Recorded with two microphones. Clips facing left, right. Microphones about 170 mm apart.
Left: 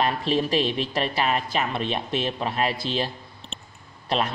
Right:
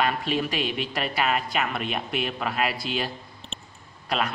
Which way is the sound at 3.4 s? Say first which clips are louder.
Left 1 dB; centre (ahead or behind).